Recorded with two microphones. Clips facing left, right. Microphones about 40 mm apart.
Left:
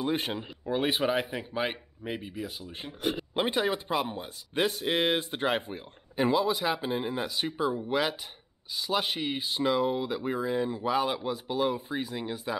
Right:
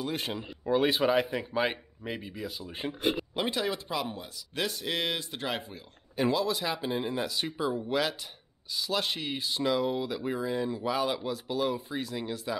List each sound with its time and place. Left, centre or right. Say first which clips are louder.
0.0 s speech: left 3 dB; centre
2.6 s speech: right 5 dB; centre
3.3 s speech: left 3 dB; left
6.1 s speech: left 2 dB; centre